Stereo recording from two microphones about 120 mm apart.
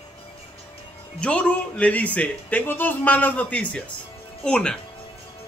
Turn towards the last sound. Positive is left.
turn(degrees=5)  # may be behind; listen again after turning